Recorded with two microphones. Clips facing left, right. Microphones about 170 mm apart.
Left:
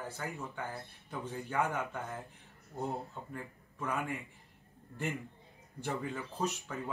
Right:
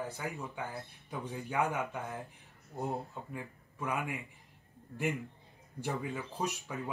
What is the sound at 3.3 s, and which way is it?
Speech, 10° right (ahead or behind).